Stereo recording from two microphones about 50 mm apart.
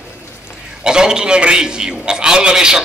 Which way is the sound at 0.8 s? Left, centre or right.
Centre.